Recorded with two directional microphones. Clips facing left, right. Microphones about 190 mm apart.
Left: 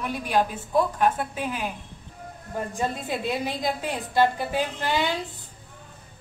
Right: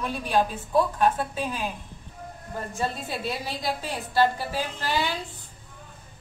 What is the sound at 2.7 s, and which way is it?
A woman's voice, 15° left (ahead or behind).